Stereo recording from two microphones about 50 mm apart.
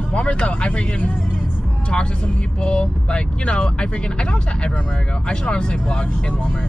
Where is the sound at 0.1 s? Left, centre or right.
Left.